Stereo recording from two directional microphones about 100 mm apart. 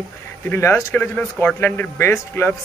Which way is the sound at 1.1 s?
15° left (ahead or behind).